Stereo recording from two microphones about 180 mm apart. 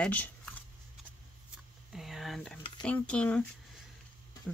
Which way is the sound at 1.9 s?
Centre (ahead or behind).